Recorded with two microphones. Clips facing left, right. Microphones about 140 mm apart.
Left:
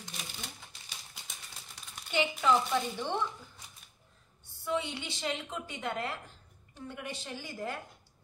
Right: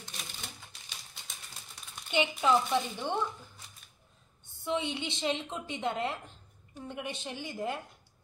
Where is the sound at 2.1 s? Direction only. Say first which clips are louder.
Right 1 dB; 20° right (ahead or behind).